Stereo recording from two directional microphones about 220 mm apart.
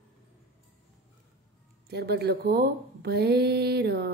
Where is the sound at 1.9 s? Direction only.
50° right (ahead or behind).